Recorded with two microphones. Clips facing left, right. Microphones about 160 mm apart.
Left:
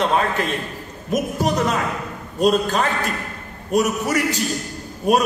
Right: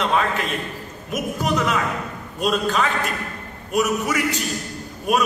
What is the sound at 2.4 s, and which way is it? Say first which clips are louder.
A man's voice: left 3 dB; 40° left (ahead or behind).